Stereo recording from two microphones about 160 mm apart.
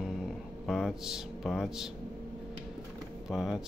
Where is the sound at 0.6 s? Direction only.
Centre (ahead or behind).